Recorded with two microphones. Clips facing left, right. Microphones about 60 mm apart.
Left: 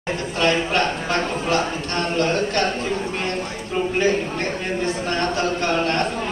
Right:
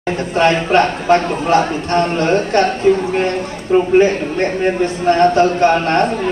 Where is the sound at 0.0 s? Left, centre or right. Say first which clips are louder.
Right 7 dB; right.